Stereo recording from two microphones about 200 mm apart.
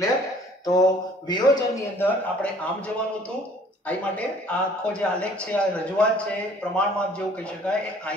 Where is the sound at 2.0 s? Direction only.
5° left (ahead or behind).